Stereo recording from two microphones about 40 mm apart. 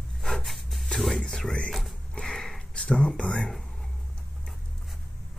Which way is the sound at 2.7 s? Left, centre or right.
Left.